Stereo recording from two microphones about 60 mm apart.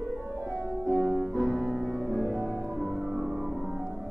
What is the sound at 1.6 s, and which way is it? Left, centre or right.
Music, centre.